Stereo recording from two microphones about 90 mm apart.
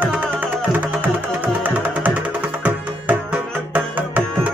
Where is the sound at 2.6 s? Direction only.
15° right (ahead or behind).